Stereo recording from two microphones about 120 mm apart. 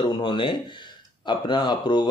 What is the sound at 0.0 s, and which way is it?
Speech, 40° left (ahead or behind).